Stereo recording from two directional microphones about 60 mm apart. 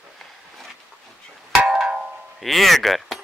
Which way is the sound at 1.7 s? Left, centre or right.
Centre.